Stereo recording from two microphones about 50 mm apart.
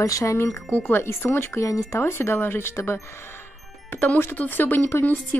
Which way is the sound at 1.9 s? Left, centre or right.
Left.